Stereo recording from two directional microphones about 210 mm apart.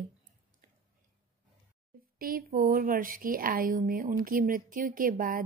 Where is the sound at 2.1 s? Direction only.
45° right (ahead or behind).